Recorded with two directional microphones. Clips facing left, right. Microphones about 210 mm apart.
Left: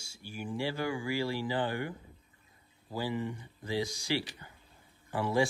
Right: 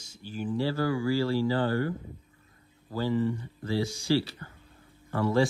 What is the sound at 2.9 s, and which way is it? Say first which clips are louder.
Speech: right 7 dB; 15° left (ahead or behind).